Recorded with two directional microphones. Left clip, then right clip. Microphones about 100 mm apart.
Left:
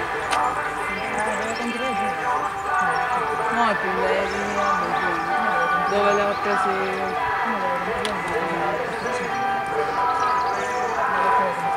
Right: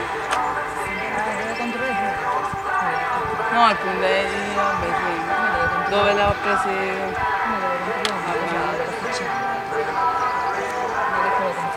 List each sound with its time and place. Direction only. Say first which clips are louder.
3.5 s speech: right 6 dB; 50° right (ahead or behind)
5.9 s speech: right 3 dB; 50° right (ahead or behind)